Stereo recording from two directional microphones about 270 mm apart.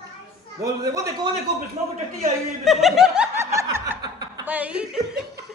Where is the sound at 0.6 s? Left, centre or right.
Centre.